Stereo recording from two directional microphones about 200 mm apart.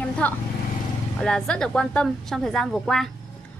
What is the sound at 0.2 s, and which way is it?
A woman's voice, 10° left (ahead or behind).